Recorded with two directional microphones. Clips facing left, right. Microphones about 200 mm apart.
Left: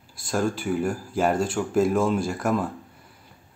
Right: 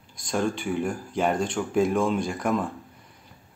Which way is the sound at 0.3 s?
5° left (ahead or behind).